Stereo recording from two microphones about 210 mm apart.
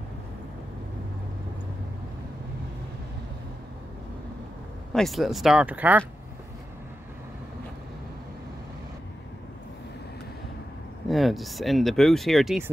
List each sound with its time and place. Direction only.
4.9 s speech: centre (ahead or behind)
11.1 s speech: centre (ahead or behind)